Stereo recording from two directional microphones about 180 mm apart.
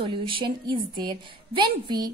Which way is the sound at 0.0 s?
30° right (ahead or behind).